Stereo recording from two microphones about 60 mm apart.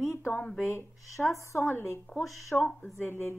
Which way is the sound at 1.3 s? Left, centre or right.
Left.